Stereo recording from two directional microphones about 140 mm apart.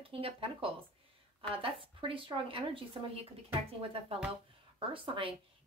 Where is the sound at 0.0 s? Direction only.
40° right (ahead or behind).